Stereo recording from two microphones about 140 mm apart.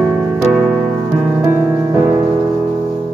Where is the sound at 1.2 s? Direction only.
15° right (ahead or behind).